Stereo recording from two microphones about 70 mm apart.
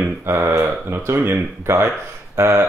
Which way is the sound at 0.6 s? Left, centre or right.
Right.